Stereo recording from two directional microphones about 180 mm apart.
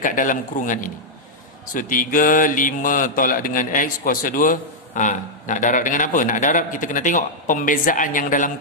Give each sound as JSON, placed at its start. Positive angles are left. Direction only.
{"t": 0.0, "sound": "mantra", "side_deg": 45}